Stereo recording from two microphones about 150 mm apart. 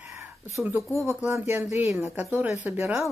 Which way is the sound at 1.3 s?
15° right (ahead or behind).